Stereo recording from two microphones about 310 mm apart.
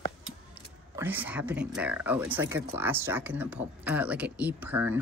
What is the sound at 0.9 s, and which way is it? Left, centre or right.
Speech, centre.